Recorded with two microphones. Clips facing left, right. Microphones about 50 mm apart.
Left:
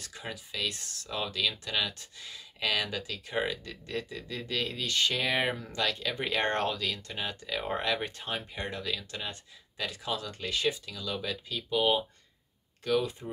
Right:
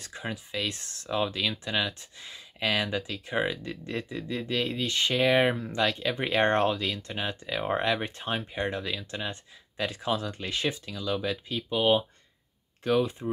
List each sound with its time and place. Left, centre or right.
0.0 s speech: right
12.8 s speech: right